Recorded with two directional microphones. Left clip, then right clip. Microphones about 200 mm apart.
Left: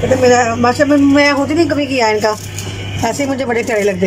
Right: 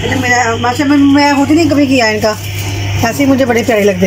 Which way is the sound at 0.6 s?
20° left (ahead or behind).